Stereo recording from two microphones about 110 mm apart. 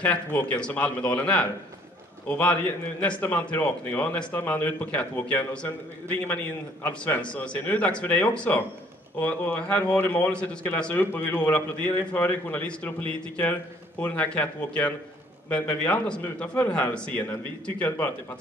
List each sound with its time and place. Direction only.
0.0 s a man's voice: 15° left (ahead or behind)